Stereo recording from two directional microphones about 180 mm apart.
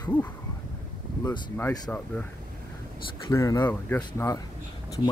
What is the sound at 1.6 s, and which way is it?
Speech, 10° left (ahead or behind).